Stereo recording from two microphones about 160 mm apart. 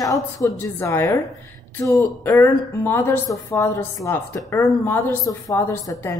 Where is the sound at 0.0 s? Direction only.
20° left (ahead or behind).